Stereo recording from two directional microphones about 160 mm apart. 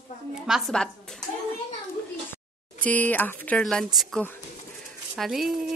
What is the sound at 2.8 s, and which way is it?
Speech, 10° left (ahead or behind).